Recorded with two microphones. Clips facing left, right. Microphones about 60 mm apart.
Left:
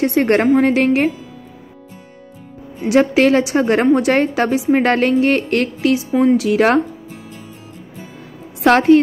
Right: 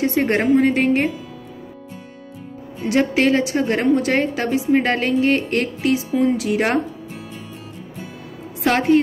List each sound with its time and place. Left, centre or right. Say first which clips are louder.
0.0 s a woman's voice: left 4 dB; left
2.9 s a woman's voice: left 4 dB; left
6.1 s a woman's voice: left 7 dB; left
8.6 s a woman's voice: left 5 dB; left